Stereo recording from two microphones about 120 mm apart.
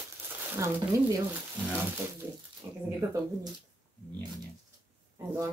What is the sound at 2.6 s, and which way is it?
Speech, 20° right (ahead or behind).